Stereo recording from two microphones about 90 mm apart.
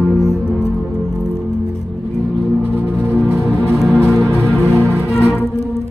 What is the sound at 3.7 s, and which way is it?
Music, centre (ahead or behind).